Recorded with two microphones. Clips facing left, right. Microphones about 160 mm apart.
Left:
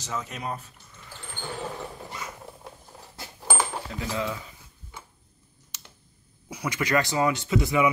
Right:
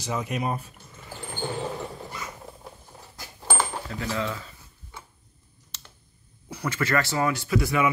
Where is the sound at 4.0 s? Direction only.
15° left (ahead or behind).